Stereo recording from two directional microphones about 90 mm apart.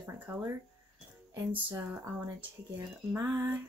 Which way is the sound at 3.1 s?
25° right (ahead or behind).